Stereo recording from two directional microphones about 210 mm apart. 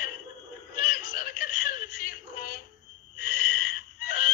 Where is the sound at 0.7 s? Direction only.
40° left (ahead or behind).